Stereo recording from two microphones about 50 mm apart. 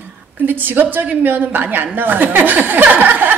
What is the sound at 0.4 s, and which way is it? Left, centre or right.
A woman's voice, right.